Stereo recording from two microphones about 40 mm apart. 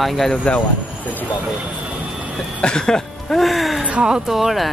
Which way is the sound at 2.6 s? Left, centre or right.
Centre.